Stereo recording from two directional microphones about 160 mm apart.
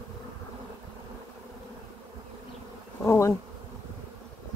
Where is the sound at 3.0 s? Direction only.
20° left (ahead or behind).